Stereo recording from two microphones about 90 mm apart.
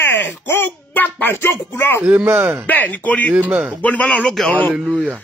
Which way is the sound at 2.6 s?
20° left (ahead or behind).